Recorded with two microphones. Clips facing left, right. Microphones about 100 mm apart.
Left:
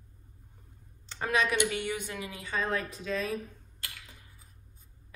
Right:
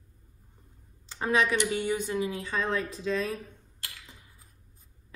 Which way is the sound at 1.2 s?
25° right (ahead or behind).